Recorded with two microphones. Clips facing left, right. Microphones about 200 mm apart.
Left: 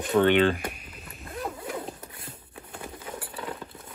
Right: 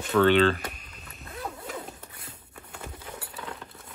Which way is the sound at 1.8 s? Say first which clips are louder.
Left 4 dB; 25° left (ahead or behind).